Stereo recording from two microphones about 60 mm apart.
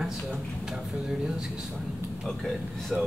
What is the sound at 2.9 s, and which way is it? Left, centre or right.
Speech, centre.